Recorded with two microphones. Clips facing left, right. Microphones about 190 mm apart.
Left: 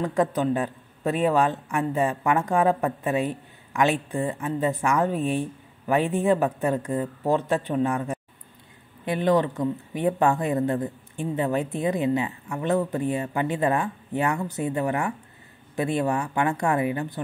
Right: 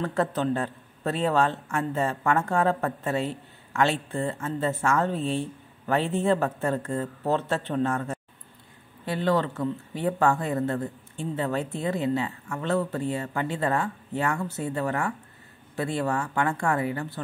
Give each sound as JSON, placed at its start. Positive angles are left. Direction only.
{"t": 0.0, "sound": "a man's voice", "side_deg": 15}